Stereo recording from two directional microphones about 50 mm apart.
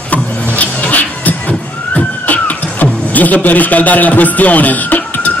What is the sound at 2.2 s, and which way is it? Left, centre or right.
Music, left.